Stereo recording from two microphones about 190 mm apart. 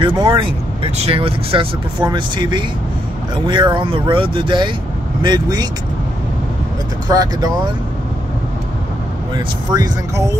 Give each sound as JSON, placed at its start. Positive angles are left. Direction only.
{"t": 0.0, "sound": "speech", "side_deg": -25}
{"t": 7.1, "sound": "speech", "side_deg": -20}
{"t": 9.3, "sound": "speech", "side_deg": -20}